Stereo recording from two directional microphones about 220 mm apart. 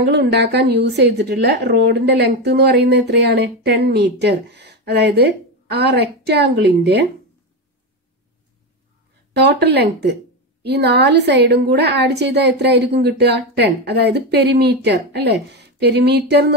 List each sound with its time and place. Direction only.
0.1 s a woman's voice: 50° right (ahead or behind)
9.3 s a woman's voice: 50° right (ahead or behind)